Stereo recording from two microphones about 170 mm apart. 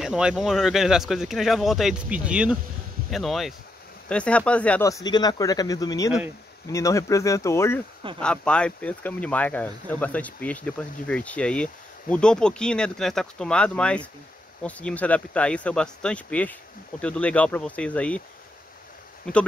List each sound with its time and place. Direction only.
0.0 s speech: 5° right (ahead or behind)
4.8 s speech: 20° left (ahead or behind)
8.2 s speech: 5° left (ahead or behind)
19.2 s speech: 5° left (ahead or behind)